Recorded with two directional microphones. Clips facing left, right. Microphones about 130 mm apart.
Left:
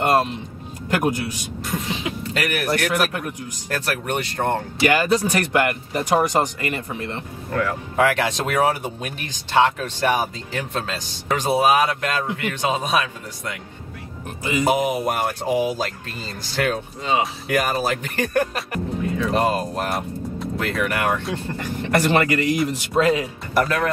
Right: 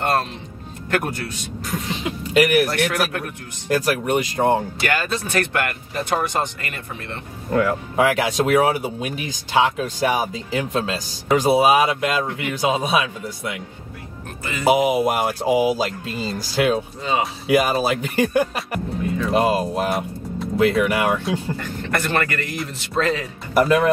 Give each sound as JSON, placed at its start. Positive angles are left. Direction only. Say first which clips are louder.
{"t": 0.0, "sound": "speech", "louder": "left 3 dB", "side_deg": 10}
{"t": 2.3, "sound": "speech", "louder": "right 10 dB", "side_deg": -10}
{"t": 3.7, "sound": "speech", "louder": "right 5 dB", "side_deg": -10}
{"t": 4.8, "sound": "speech", "louder": "left 5 dB", "side_deg": 15}
{"t": 7.5, "sound": "speech", "louder": "right 3 dB", "side_deg": -15}
{"t": 14.6, "sound": "speech", "louder": "right 4 dB", "side_deg": -5}
{"t": 21.5, "sound": "speech", "louder": "left 4 dB", "side_deg": 10}
{"t": 23.6, "sound": "speech", "louder": "right 5 dB", "side_deg": -15}